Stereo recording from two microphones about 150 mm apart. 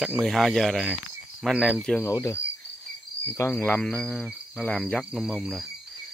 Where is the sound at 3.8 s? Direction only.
5° left (ahead or behind).